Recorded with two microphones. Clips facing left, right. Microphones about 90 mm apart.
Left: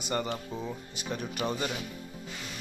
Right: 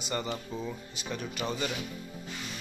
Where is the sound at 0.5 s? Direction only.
15° left (ahead or behind).